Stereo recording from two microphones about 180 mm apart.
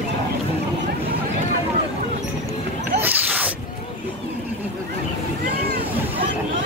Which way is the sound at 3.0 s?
10° right (ahead or behind).